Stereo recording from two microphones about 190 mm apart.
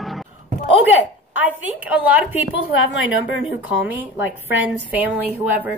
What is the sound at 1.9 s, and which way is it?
Speech, 5° right (ahead or behind).